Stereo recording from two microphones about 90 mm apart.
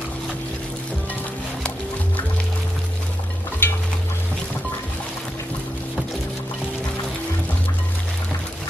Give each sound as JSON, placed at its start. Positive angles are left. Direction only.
{"t": 3.6, "sound": "stir", "side_deg": 25}